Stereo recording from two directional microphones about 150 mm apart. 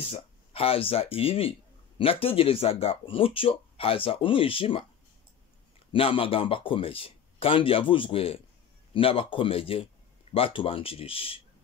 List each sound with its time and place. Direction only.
0.0 s speech: 40° left (ahead or behind)
5.9 s speech: 35° left (ahead or behind)